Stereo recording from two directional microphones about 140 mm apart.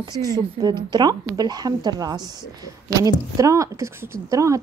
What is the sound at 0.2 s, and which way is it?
Speech, 25° right (ahead or behind).